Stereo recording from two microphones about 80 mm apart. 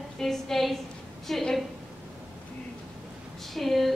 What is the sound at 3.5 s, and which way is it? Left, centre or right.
Speech, centre.